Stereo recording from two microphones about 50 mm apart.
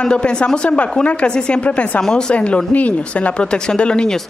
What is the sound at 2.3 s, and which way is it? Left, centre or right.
Speech, left.